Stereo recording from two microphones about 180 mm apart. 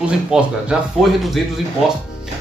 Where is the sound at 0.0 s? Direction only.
5° right (ahead or behind).